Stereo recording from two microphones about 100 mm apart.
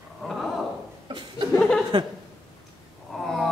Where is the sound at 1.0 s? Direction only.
50° right (ahead or behind).